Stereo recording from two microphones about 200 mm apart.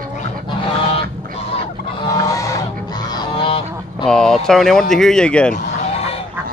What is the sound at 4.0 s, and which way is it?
Speech, centre (ahead or behind).